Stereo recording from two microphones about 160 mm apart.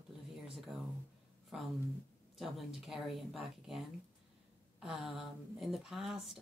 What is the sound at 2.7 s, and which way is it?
Speech, centre (ahead or behind).